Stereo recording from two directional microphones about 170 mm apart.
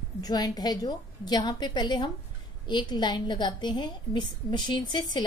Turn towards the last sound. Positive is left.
turn(degrees=25)  # may be behind; listen again after turning